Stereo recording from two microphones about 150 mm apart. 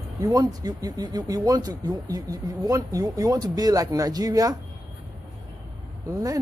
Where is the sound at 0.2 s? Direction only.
25° right (ahead or behind).